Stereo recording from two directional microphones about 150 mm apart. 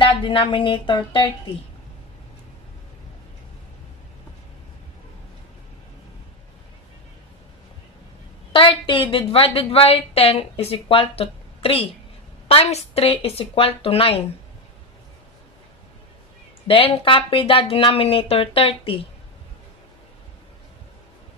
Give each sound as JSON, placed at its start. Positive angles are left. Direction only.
{"t": 0.0, "sound": "a woman's voice", "side_deg": 35}
{"t": 8.5, "sound": "a woman's voice", "side_deg": 35}
{"t": 16.6, "sound": "a woman's voice", "side_deg": 40}